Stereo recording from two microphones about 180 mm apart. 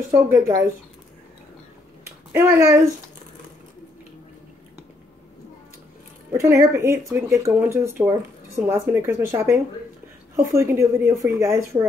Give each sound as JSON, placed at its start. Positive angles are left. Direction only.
{"t": 0.1, "sound": "speech", "side_deg": -15}
{"t": 2.3, "sound": "speech", "side_deg": -15}
{"t": 6.3, "sound": "speech", "side_deg": -15}